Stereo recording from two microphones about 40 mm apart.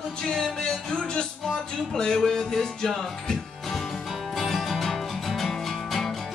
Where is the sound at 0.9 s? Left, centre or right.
Centre.